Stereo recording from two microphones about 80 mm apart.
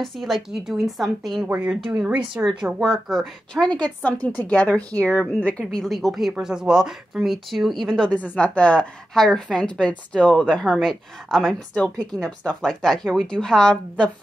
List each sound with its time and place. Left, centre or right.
0.0 s speech: centre
1.5 s speech: centre
2.8 s speech: centre
3.6 s speech: centre
5.7 s a woman's voice: centre